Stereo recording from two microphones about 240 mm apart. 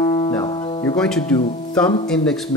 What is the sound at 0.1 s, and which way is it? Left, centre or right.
Music, centre.